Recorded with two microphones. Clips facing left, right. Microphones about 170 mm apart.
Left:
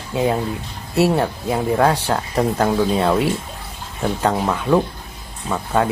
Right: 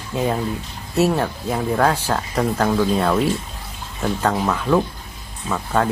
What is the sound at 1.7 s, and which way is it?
Speech, 25° left (ahead or behind).